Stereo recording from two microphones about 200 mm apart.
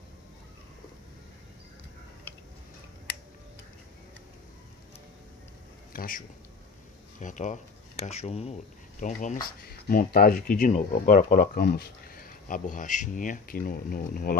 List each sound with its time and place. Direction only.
5.9 s speech: 45° left (ahead or behind)